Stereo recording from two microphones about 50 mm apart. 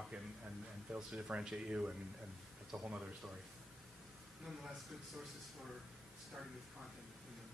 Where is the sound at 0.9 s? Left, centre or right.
Centre.